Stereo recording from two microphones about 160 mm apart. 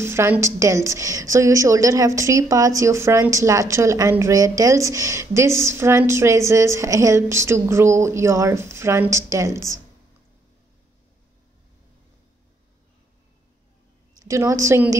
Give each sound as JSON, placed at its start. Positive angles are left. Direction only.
{"t": 0.0, "sound": "a woman's voice", "side_deg": -15}
{"t": 14.2, "sound": "a woman's voice", "side_deg": -20}